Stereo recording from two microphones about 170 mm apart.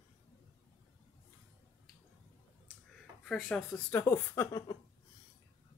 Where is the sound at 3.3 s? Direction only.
Centre (ahead or behind).